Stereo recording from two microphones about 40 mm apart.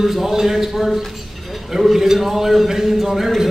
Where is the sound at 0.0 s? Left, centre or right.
Centre.